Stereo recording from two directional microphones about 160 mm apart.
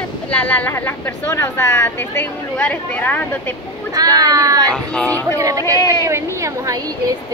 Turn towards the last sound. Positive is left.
turn(degrees=-20)  # may be behind; listen again after turning